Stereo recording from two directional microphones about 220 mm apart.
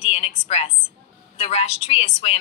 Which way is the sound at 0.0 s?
30° left (ahead or behind).